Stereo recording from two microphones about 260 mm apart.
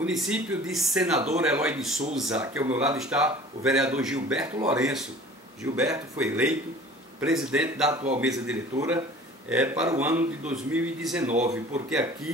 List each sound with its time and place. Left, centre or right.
0.0 s speech: centre
4.6 s speech: centre
5.6 s speech: centre
11.2 s speech: right